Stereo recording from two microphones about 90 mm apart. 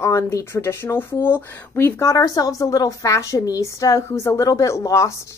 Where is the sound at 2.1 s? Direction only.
45° left (ahead or behind).